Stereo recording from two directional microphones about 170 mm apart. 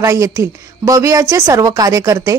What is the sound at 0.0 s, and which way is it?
Speech, 20° right (ahead or behind).